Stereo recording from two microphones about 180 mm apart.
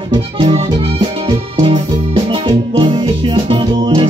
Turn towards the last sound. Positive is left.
turn(degrees=-25)  # may be behind; listen again after turning